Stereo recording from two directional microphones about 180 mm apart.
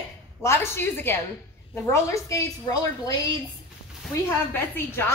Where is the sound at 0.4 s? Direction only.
15° left (ahead or behind).